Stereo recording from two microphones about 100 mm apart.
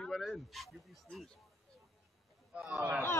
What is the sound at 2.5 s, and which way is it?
Speech, 10° right (ahead or behind).